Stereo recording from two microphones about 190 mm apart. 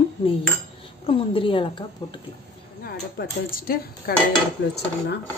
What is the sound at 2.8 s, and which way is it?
Speech, 50° left (ahead or behind).